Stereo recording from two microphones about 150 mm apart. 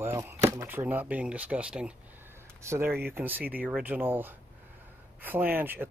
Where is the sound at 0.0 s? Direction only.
20° right (ahead or behind).